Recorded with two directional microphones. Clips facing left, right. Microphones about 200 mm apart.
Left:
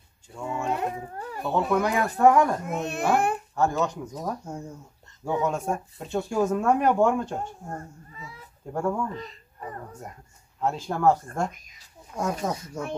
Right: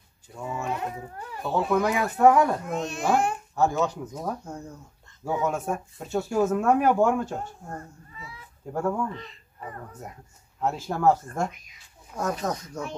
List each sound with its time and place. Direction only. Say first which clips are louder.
0.3 s speech: left 2 dB; 5° right (ahead or behind)
2.8 s a child's voice: left 1 dB; 60° left (ahead or behind)
3.5 s speech: right 2 dB; 5° right (ahead or behind)
4.5 s speech: left 2 dB; 10° left (ahead or behind)
5.2 s speech: left 1 dB; 5° right (ahead or behind)
7.7 s speech: left 1 dB; 40° left (ahead or behind)
8.7 s speech: even; 5° right (ahead or behind)
9.1 s speech: left 3 dB; 40° left (ahead or behind)
10.6 s speech: even; 5° right (ahead or behind)
11.5 s speech: even; 45° left (ahead or behind)
12.2 s speech: even; 10° left (ahead or behind)